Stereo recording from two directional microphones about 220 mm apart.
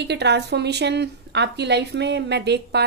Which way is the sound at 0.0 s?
50° right (ahead or behind).